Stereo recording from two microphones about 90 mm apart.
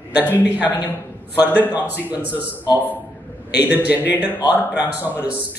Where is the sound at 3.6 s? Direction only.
20° right (ahead or behind).